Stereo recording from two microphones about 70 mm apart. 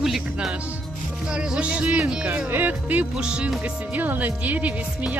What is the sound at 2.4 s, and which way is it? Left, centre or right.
Speech, right.